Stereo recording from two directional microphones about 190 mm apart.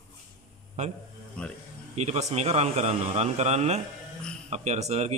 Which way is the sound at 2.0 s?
35° right (ahead or behind).